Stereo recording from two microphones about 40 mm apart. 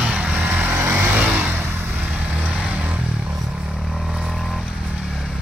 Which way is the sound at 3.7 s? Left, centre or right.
Centre.